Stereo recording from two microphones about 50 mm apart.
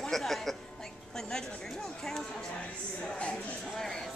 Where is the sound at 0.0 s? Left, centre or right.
Centre.